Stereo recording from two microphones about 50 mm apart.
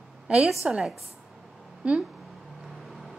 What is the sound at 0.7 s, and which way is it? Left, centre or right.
Speech, centre.